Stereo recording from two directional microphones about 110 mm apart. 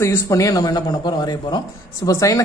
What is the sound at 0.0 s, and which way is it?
A woman's voice, 25° left (ahead or behind).